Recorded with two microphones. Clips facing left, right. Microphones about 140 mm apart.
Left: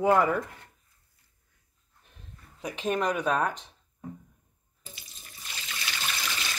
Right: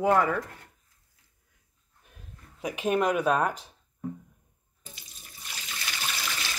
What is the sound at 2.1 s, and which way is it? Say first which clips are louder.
Speech: right 1 dB; 5° right (ahead or behind).